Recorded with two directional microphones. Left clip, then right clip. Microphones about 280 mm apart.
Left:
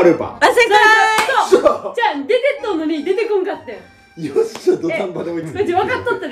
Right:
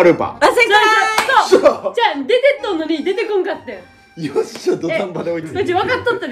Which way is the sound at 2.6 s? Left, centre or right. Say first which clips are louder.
Even; right.